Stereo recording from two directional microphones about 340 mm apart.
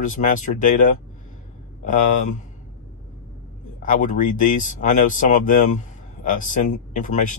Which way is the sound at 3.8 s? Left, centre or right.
Left.